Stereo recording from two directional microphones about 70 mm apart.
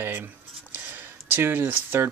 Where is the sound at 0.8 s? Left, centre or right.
Right.